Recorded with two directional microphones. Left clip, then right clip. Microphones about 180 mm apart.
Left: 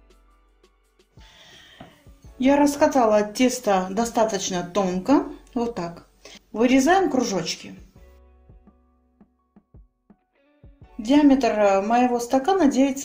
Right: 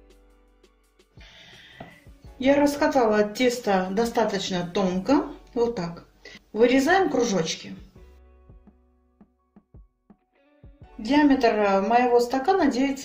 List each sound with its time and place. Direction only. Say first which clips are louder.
0.1 s music: right 2 dB; centre (ahead or behind)
2.4 s speech: left 2 dB; 35° left (ahead or behind)
9.2 s music: even; centre (ahead or behind)
11.1 s speech: left 2 dB; 35° left (ahead or behind)